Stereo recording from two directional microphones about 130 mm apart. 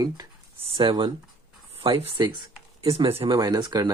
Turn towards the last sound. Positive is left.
turn(degrees=-30)  # may be behind; listen again after turning